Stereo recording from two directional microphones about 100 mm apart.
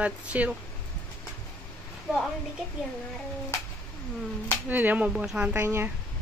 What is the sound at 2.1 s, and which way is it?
Speech, 5° right (ahead or behind).